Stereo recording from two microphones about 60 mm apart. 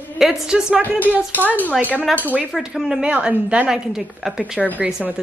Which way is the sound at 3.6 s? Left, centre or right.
Centre.